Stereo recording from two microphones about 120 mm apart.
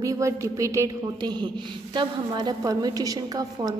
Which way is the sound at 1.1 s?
40° right (ahead or behind).